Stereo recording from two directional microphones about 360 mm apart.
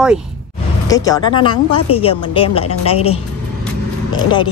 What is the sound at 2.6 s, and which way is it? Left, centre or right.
Speech, left.